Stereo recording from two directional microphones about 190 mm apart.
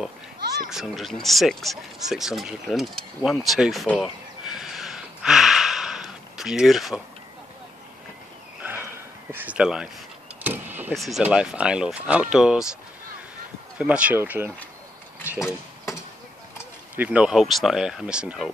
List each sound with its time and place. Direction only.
0.7 s speech: centre (ahead or behind)
9.3 s speech: 10° right (ahead or behind)
10.4 s vehicle: 10° right (ahead or behind)
11.0 s speech: centre (ahead or behind)
13.7 s speech: 5° right (ahead or behind)
15.4 s a sound: 15° left (ahead or behind)
16.9 s speech: 10° right (ahead or behind)